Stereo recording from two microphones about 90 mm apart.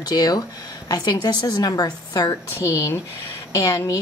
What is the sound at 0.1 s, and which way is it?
A woman's voice, 45° left (ahead or behind).